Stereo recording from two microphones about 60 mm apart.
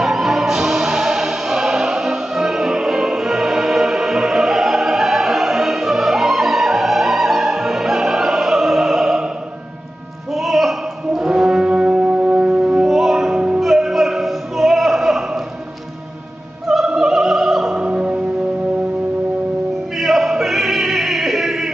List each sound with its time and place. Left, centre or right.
0.0 s music: centre
10.3 s brass instrument: centre
12.8 s music: centre
16.6 s opera: centre
17.8 s music: centre
20.0 s music: centre